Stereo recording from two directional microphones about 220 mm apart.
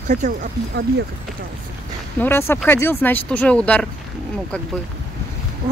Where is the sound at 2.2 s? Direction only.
10° left (ahead or behind).